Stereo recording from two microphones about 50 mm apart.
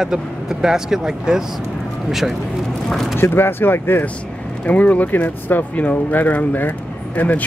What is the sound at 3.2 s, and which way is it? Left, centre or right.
Speech, left.